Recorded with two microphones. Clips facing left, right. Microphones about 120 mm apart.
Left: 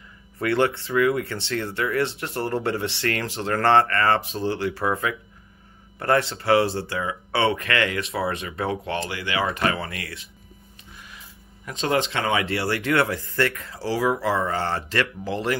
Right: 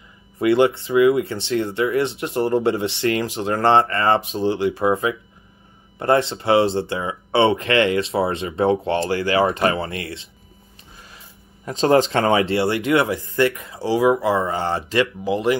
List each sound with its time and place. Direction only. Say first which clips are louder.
0.4 s speech: right 6 dB; 15° right (ahead or behind)
11.6 s speech: right 8 dB; 35° right (ahead or behind); by 15.5 s 15° right (ahead or behind)